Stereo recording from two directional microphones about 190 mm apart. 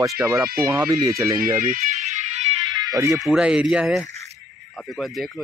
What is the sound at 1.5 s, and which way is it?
Music, 45° right (ahead or behind).